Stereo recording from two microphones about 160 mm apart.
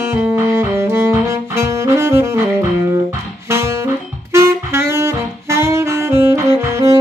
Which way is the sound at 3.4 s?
15° right (ahead or behind).